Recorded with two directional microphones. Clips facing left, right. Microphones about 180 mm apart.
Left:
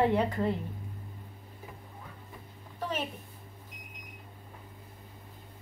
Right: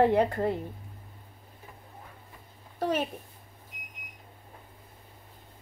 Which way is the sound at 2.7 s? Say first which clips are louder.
Right 6 dB; 40° right (ahead or behind).